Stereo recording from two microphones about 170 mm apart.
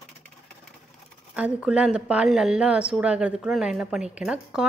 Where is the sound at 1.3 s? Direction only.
5° right (ahead or behind).